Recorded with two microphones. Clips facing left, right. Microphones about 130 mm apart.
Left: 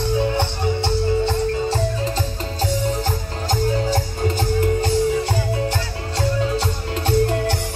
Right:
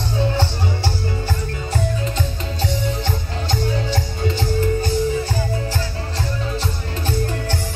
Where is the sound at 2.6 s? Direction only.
40° left (ahead or behind).